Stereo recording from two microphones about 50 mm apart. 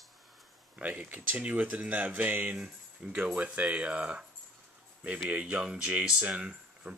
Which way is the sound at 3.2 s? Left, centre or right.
Right.